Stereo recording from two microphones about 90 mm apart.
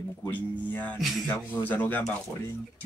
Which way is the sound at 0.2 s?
20° left (ahead or behind).